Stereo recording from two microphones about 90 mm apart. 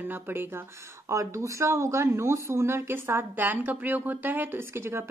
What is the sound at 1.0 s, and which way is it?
Speech, 35° right (ahead or behind).